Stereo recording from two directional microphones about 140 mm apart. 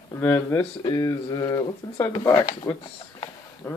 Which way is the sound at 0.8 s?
30° left (ahead or behind).